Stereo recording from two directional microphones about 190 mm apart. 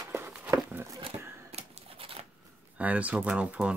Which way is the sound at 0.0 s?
10° right (ahead or behind).